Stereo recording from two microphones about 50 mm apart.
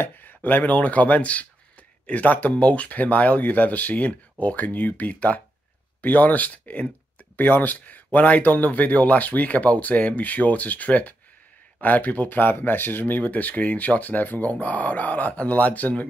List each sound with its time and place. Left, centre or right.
0.0 s speech: left
13.2 s speech: left